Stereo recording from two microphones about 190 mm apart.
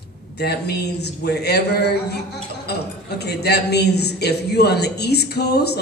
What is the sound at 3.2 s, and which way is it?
A woman's voice, 60° left (ahead or behind).